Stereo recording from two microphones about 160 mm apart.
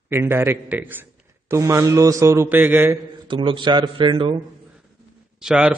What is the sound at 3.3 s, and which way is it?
Speech, 30° right (ahead or behind).